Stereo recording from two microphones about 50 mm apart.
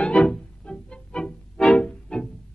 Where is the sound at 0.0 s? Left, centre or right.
Centre.